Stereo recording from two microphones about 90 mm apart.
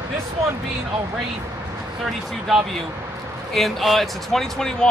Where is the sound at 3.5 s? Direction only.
Centre (ahead or behind).